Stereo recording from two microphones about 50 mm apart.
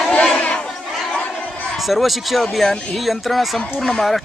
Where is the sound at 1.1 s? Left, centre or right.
Left.